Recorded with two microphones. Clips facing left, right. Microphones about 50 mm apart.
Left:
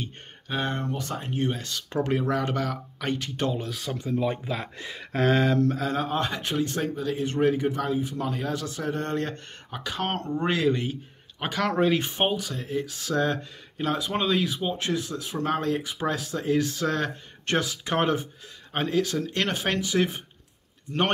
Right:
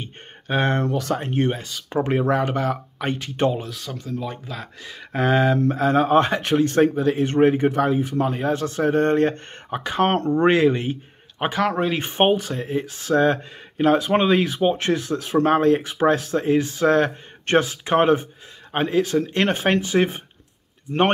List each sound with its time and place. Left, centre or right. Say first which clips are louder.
0.5 s speech: right 7 dB; right
0.7 s speech: right 8 dB; right
1.2 s speech: right 6 dB; right
1.6 s speech: right 4 dB; centre
2.1 s speech: right 6 dB; right
3.6 s speech: left 1 dB; centre
5.1 s speech: right 3 dB; centre; by 8.3 s right
8.3 s speech: right 7 dB; right
8.6 s speech: right 10 dB; right
11.5 s speech: right 1 dB; centre
12.0 s speech: right 7 dB; right
16.5 s speech: right 8 dB; right